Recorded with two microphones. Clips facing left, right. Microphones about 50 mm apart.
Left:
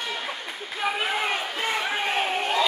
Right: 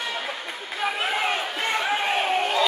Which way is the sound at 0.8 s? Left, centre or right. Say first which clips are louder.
Right 1 dB; centre.